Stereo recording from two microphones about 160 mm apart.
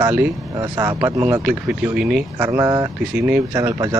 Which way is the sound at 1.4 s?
5° right (ahead or behind).